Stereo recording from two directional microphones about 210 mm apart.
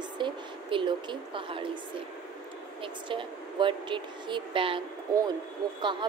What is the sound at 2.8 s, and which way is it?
Speech, 25° right (ahead or behind).